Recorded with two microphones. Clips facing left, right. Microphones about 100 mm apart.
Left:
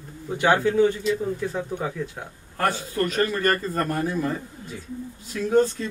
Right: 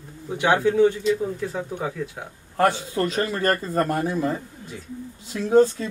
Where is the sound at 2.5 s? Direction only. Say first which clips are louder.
Right 3 dB; 25° right (ahead or behind).